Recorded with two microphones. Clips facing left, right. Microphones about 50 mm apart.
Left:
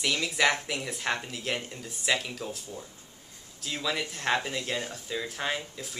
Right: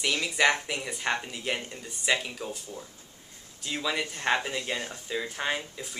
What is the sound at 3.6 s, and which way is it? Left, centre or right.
Speech, centre.